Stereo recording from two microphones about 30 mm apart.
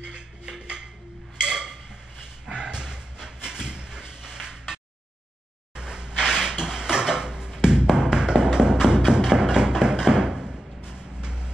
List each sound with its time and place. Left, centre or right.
0.0 s music: right
1.4 s a sound: right
4.2 s a sound: centre
5.8 s drawer open or close: right
7.9 s tap: right
8.8 s music: right